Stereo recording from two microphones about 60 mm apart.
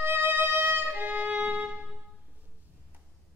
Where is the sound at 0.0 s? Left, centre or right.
Right.